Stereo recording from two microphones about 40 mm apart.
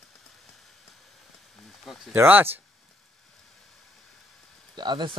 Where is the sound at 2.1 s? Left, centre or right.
Right.